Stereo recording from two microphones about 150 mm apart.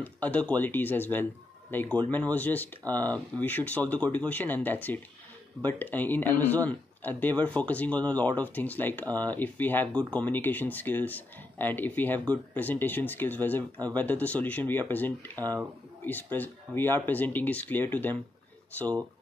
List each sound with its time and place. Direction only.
0.0 s speech: 10° left (ahead or behind)
15.3 s speech: 25° right (ahead or behind)
16.1 s speech: 10° left (ahead or behind)